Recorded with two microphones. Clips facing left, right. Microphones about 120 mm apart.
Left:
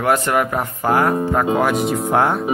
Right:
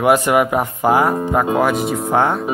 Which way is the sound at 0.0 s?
10° right (ahead or behind).